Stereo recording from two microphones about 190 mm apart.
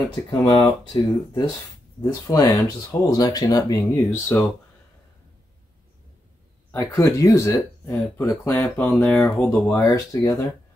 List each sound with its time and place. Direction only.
0.3 s speech: 25° left (ahead or behind)
6.7 s speech: 15° left (ahead or behind)
9.8 s speech: 20° left (ahead or behind)